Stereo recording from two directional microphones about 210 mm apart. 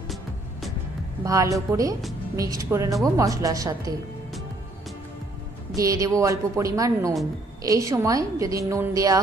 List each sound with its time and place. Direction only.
0.1 s music: centre (ahead or behind)
1.2 s a woman's voice: 15° right (ahead or behind)
5.8 s a woman's voice: 15° right (ahead or behind)